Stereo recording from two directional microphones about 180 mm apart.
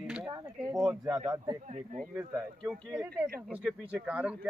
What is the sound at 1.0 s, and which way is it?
Speech, 15° right (ahead or behind).